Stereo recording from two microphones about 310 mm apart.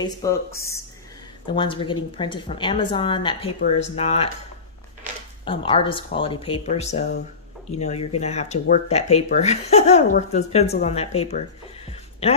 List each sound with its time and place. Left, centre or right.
0.0 s a woman's voice: centre
5.4 s a woman's voice: centre
11.1 s music: centre